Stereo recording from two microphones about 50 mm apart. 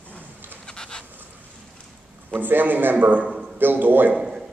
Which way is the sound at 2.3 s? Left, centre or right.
Right.